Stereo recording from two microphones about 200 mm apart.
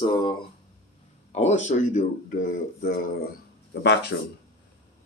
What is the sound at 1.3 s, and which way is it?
Speech, 35° left (ahead or behind).